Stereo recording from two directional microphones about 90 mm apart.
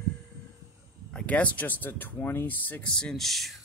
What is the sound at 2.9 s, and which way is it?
Speech, 5° left (ahead or behind).